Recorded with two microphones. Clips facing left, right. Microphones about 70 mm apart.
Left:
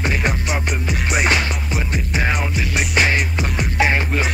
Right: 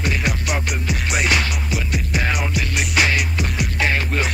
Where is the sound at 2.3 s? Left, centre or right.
Centre.